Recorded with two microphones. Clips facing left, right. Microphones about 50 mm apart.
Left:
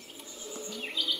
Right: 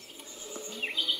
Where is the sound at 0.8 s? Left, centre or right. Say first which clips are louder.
Right 2 dB; right.